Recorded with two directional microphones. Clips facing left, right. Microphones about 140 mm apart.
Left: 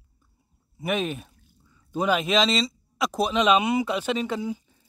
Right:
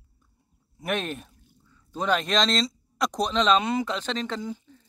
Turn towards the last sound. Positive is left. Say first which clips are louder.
# left 3 dB
turn(degrees=10)  # may be behind; listen again after turning